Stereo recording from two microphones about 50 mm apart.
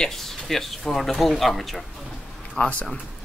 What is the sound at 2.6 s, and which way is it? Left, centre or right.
Speech, left.